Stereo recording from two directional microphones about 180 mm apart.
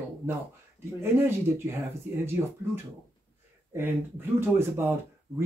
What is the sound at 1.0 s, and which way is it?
Speech, 15° right (ahead or behind).